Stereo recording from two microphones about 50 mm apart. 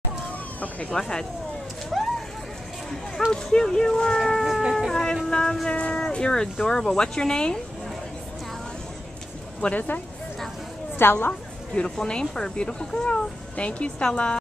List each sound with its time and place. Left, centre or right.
0.6 s speech: left
0.9 s speech: centre
1.9 s vehicle: centre
3.3 s speech: centre
4.5 s emergency vehicle: centre
4.7 s vehicle: centre
5.3 s speech: centre
5.8 s a sound: centre
6.6 s speech: centre
9.6 s speech: left
11.0 s a woman's voice: left
11.7 s speech: left